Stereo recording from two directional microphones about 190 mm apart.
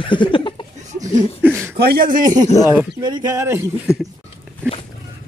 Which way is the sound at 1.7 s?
55° right (ahead or behind).